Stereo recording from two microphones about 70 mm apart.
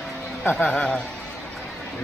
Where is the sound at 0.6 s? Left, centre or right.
Centre.